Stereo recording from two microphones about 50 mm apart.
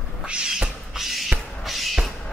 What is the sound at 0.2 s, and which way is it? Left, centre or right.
Cat, centre.